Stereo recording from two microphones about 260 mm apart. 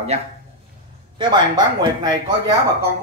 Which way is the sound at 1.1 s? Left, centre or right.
Centre.